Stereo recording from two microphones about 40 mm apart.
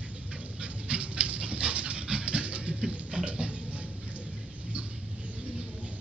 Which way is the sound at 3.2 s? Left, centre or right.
Right.